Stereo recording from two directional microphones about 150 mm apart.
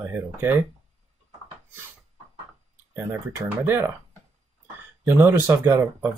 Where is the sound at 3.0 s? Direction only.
15° right (ahead or behind).